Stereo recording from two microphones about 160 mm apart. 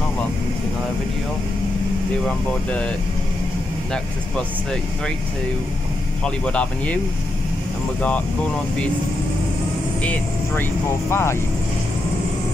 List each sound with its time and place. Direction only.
2.2 s speech: 5° left (ahead or behind)
6.2 s speech: 5° left (ahead or behind)
10.0 s speech: 10° left (ahead or behind)